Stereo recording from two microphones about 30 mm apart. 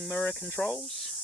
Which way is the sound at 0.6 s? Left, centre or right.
Left.